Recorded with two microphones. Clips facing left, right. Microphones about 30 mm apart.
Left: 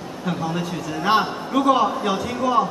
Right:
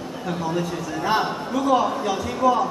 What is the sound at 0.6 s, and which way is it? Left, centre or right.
A man's voice, left.